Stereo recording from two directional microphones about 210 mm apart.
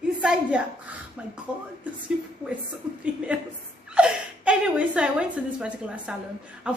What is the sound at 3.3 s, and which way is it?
A woman's voice, 5° right (ahead or behind).